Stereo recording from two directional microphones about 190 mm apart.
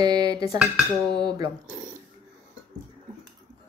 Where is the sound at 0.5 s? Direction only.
5° right (ahead or behind).